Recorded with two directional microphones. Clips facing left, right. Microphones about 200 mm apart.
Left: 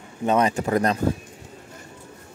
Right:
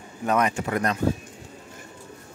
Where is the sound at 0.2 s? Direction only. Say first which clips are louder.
Left 3 dB; 30° left (ahead or behind).